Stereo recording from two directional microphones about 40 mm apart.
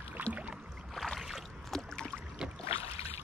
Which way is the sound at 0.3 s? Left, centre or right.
Right.